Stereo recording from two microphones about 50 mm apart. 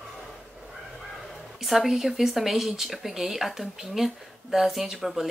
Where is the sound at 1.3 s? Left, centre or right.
Centre.